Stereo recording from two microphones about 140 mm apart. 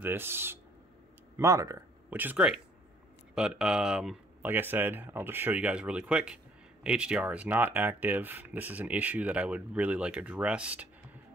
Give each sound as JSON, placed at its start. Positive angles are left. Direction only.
{"t": 0.0, "sound": "speech", "side_deg": -15}
{"t": 2.0, "sound": "speech", "side_deg": -10}